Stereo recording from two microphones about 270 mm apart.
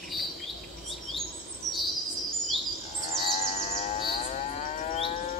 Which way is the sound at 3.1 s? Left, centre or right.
Left.